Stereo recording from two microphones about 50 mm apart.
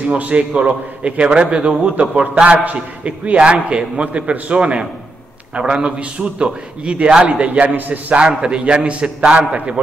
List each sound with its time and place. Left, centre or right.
0.1 s a man's voice: right
4.6 s a man's voice: centre; by 8.2 s right
8.2 s a man's voice: centre